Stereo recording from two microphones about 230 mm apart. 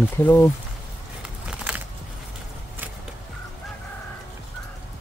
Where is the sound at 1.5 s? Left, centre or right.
Centre.